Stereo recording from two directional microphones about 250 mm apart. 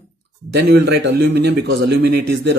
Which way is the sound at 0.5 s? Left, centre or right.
Right.